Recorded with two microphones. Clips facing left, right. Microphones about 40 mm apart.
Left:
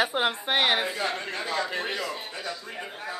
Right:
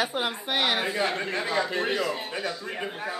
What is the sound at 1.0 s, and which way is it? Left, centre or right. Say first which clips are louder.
Speech: right 2 dB; centre.